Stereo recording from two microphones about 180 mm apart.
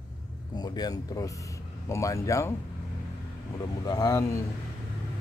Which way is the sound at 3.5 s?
20° left (ahead or behind).